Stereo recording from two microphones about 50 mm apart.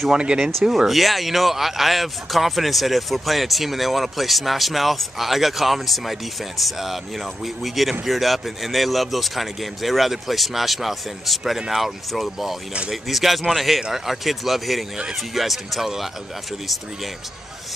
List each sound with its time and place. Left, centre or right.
0.1 s speech: centre
0.7 s speech: centre